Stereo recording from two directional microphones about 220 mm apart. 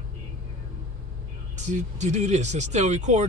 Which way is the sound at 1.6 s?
30° right (ahead or behind).